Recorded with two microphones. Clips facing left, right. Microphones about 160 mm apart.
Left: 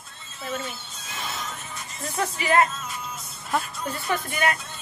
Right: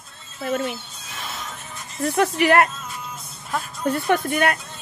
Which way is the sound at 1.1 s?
Centre (ahead or behind).